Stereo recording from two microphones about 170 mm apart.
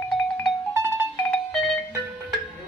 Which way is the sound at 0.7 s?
15° right (ahead or behind).